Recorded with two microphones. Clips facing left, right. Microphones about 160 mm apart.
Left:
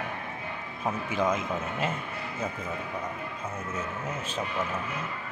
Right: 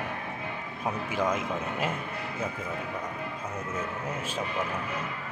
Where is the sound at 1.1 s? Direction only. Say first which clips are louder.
Left 1 dB; 10° right (ahead or behind).